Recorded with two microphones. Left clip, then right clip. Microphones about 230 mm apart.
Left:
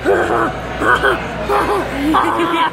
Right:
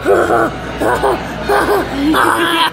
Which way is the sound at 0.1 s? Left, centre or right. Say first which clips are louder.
Right 3 dB; centre.